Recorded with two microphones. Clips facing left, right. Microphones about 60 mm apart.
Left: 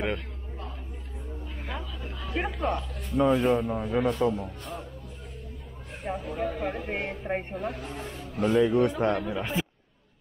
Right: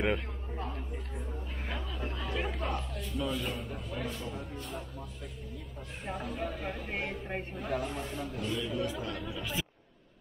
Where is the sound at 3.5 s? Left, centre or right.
Left.